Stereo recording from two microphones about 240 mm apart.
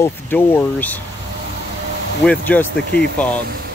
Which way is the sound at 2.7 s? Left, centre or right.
Left.